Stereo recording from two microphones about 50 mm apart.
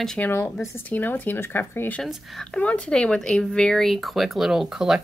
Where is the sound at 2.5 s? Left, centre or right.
Left; by 5.0 s centre.